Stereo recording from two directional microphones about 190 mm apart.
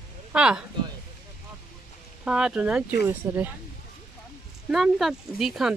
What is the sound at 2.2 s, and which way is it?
Speech, 5° right (ahead or behind).